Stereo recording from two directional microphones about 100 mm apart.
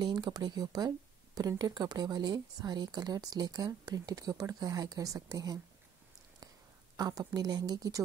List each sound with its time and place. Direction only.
0.0 s speech: 45° right (ahead or behind)
7.0 s speech: 40° right (ahead or behind)